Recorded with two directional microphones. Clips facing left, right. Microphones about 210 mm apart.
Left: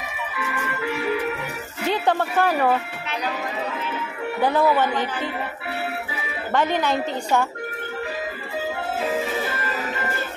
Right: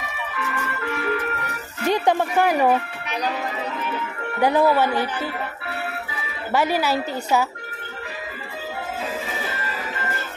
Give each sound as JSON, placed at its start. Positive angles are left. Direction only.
{"t": 0.4, "sound": "music", "side_deg": 10}
{"t": 1.9, "sound": "speech", "side_deg": -15}
{"t": 4.4, "sound": "a woman's voice", "side_deg": -15}
{"t": 6.5, "sound": "a woman's voice", "side_deg": -10}